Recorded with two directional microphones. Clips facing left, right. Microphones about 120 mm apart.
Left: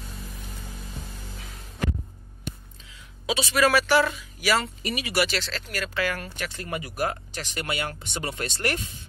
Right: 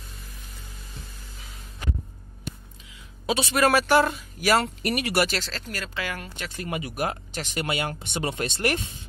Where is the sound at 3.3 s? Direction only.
50° right (ahead or behind).